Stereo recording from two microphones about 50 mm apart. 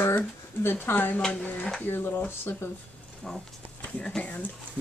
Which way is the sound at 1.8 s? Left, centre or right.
Left.